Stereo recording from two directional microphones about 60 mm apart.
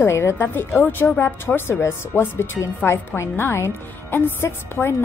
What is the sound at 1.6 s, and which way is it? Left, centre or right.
A woman's voice, left.